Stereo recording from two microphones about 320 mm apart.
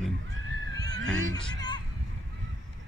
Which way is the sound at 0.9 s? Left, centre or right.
Right.